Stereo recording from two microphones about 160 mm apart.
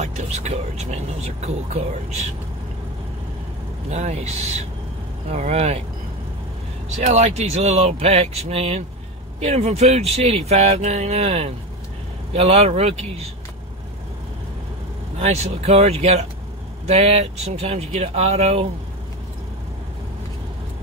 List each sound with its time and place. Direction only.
0.0 s speech: 45° right (ahead or behind)
3.9 s speech: 45° right (ahead or behind)
7.0 s speech: 45° right (ahead or behind)
15.1 s speech: 40° right (ahead or behind)